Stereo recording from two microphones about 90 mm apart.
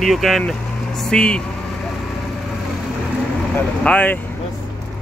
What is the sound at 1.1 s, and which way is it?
Speech, 10° left (ahead or behind).